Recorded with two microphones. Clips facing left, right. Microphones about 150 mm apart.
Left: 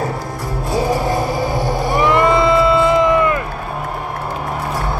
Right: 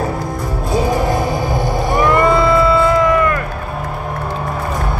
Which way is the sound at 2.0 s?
20° left (ahead or behind).